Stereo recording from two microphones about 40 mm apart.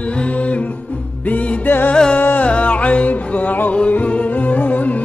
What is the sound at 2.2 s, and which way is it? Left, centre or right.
Music, left.